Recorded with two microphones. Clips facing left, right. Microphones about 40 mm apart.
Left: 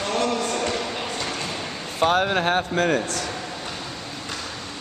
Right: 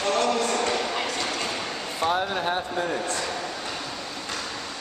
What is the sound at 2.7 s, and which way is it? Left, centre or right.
Speech, left.